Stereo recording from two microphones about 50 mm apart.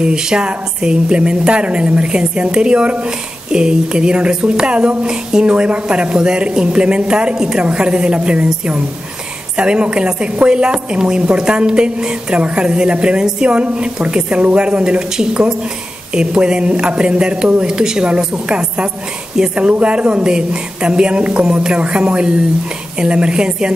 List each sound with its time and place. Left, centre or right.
0.0 s a woman's voice: centre
9.6 s a woman's voice: centre